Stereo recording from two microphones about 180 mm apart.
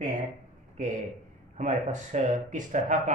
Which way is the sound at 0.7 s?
40° right (ahead or behind).